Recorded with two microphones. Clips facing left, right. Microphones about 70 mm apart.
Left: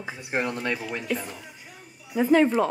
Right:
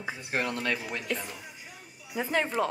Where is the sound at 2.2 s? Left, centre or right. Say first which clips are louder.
Left 8 dB; centre.